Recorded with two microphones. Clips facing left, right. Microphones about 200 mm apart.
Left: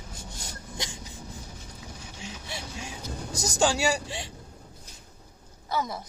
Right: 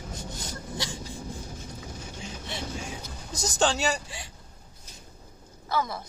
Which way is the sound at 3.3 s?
15° left (ahead or behind).